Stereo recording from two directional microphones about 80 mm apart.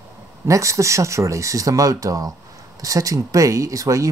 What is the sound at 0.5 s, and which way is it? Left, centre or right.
Speech, right.